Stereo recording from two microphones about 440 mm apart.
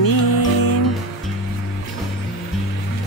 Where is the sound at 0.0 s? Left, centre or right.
Left.